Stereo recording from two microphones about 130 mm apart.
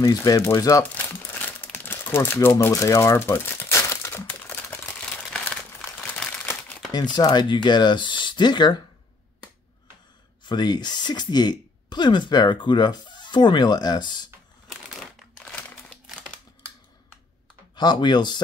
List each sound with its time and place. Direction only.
0.0 s speech: 25° left (ahead or behind)
1.3 s crumpling: 15° left (ahead or behind)
6.9 s speech: 30° left (ahead or behind)
10.4 s speech: 35° left (ahead or behind)
14.7 s crumpling: centre (ahead or behind)
17.7 s speech: 35° left (ahead or behind)